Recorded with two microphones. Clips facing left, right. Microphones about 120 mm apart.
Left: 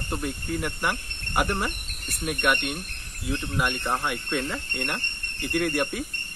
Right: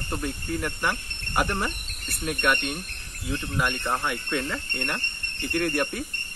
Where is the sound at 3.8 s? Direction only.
10° left (ahead or behind).